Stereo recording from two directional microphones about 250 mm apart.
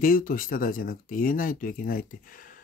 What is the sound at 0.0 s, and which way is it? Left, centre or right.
Speech, left.